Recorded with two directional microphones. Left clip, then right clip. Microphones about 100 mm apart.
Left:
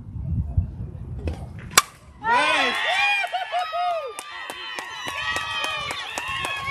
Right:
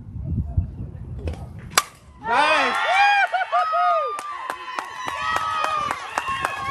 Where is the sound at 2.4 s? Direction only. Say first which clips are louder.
Right 2 dB; 20° left (ahead or behind).